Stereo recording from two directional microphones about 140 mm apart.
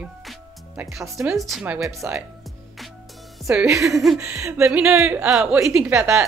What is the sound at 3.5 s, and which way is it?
Speech, 5° right (ahead or behind).